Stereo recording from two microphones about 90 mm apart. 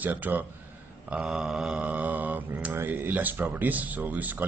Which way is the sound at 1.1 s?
10° right (ahead or behind).